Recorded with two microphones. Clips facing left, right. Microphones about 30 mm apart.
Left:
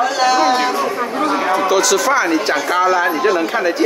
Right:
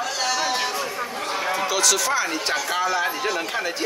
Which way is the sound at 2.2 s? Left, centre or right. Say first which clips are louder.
Left 8 dB; centre.